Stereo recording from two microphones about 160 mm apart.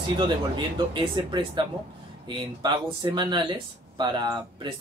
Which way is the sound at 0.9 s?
30° right (ahead or behind).